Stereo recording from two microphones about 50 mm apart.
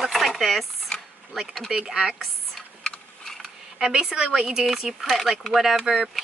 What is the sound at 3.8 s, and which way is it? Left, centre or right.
Speech, centre.